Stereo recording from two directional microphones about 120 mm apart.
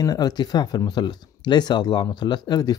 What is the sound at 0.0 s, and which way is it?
Speech, 30° left (ahead or behind).